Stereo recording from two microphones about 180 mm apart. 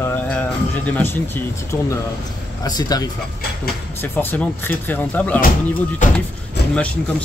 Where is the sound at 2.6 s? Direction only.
20° left (ahead or behind).